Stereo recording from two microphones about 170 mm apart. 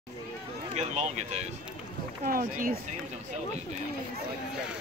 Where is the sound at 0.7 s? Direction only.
40° right (ahead or behind).